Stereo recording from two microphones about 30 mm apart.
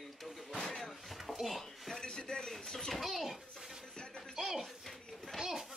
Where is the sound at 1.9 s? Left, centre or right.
Left.